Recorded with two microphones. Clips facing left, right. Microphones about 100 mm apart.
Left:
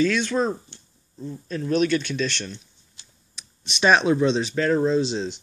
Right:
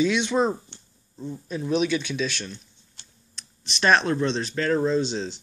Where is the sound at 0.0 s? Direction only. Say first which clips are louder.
Even; 15° right (ahead or behind).